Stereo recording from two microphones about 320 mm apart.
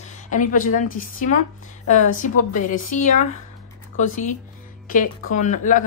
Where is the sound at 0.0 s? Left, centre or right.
Left.